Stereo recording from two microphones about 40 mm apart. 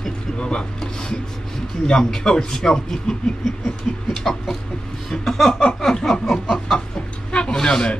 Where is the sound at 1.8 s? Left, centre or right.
Centre.